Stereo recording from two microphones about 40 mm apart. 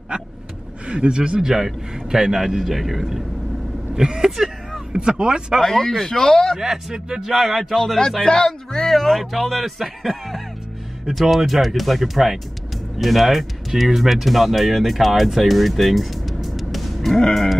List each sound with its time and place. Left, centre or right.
0.8 s a man's voice: right; by 3.3 s centre
3.9 s a man's voice: centre
5.6 s speech: centre
6.5 s a man's voice: centre
7.7 s speech: centre
8.2 s speech: centre
17.2 s livestock: centre